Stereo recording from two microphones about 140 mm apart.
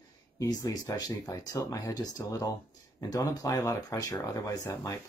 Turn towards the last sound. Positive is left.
turn(degrees=25)  # may be behind; listen again after turning